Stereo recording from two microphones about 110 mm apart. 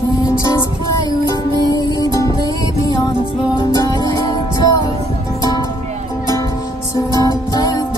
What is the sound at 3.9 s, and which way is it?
Music, 35° left (ahead or behind).